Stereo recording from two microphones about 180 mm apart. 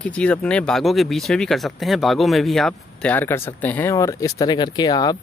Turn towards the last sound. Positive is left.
turn(degrees=20)  # may be behind; listen again after turning